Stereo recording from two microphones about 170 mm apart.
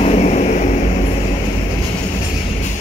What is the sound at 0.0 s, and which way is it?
Vehicle, 40° left (ahead or behind).